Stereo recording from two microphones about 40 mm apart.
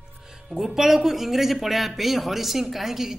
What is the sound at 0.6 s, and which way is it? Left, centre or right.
A woman's voice, centre.